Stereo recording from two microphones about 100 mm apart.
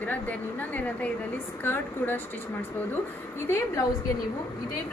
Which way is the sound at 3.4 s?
25° left (ahead or behind).